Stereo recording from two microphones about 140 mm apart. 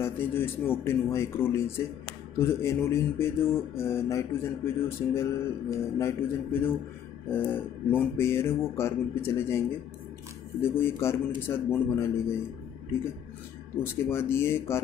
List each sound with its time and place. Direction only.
0.0 s speech: 15° left (ahead or behind)
14.1 s speech: 15° left (ahead or behind)